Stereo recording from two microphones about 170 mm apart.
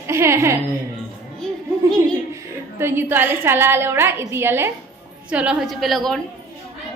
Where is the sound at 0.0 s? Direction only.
15° right (ahead or behind).